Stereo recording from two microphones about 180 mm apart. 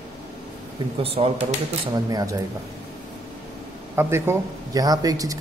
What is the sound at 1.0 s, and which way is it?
Speech, 30° right (ahead or behind).